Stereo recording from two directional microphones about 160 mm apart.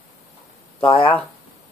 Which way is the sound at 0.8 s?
30° left (ahead or behind).